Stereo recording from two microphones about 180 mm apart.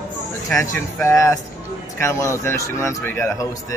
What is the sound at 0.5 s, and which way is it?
Speech, 5° left (ahead or behind).